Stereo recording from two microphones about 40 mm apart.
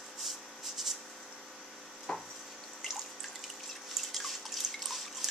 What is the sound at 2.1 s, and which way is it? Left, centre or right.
Frying, centre.